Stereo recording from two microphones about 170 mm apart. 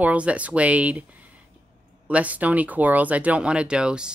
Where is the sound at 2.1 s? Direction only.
10° right (ahead or behind).